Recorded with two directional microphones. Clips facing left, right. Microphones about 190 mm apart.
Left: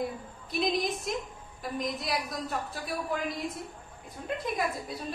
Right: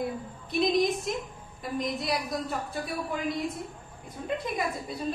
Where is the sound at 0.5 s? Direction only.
Centre (ahead or behind).